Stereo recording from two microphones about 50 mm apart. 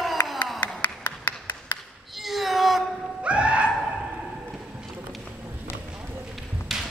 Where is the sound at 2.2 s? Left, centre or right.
Centre.